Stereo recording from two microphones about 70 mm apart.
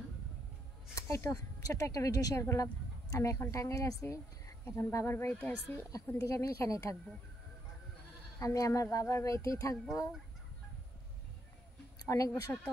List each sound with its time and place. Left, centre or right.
0.9 s speech: left
4.6 s speech: left
6.2 s speech: left
8.4 s speech: left
12.1 s speech: left